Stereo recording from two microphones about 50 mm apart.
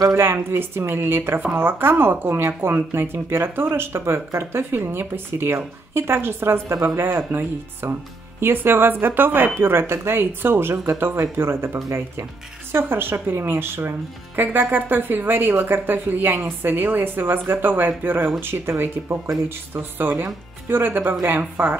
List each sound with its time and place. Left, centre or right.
0.1 s speech: right
12.7 s a woman's voice: right